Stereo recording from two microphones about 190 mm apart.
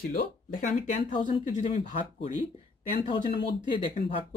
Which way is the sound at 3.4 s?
40° left (ahead or behind).